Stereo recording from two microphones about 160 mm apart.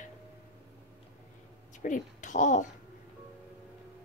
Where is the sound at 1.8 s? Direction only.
50° left (ahead or behind).